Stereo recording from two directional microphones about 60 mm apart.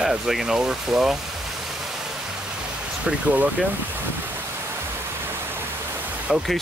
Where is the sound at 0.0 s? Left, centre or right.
Centre.